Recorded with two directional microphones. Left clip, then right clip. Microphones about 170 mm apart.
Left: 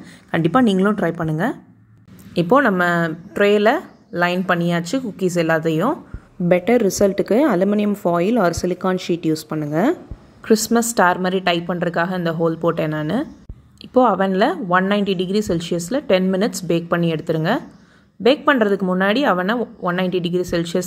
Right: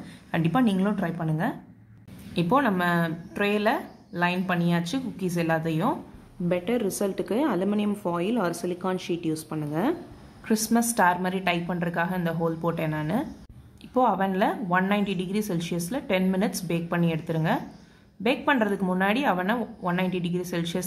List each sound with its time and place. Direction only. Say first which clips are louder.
0.3 s a woman's voice: left 8 dB; 30° left (ahead or behind)